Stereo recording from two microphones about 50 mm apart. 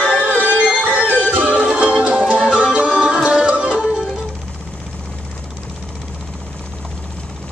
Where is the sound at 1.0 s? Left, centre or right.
Left.